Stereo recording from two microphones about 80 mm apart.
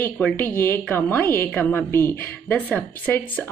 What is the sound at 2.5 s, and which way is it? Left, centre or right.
Speech, centre.